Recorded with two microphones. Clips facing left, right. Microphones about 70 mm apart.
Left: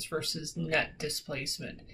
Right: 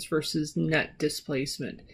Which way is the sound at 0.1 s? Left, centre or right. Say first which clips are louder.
Right 9 dB; right.